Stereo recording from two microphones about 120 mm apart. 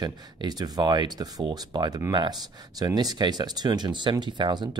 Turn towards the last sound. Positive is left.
turn(degrees=-40)  # may be behind; listen again after turning